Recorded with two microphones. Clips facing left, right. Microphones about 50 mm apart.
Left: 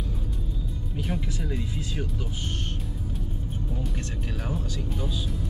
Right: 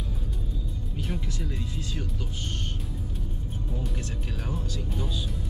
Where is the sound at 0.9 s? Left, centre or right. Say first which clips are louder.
Left 3 dB; centre.